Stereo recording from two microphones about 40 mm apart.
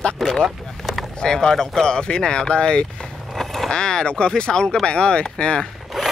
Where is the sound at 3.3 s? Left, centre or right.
Centre.